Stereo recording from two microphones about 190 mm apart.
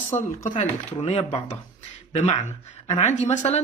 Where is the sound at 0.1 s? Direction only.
10° left (ahead or behind).